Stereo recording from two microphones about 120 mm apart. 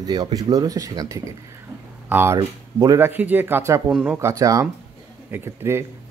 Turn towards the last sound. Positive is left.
turn(degrees=-20)  # may be behind; listen again after turning